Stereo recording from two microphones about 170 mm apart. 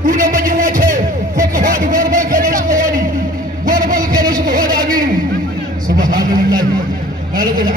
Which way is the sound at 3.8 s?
55° right (ahead or behind).